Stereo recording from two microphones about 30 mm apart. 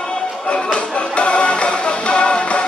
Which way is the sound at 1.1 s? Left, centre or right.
Left.